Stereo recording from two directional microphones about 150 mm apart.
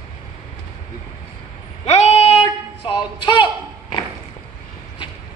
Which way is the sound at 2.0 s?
5° right (ahead or behind).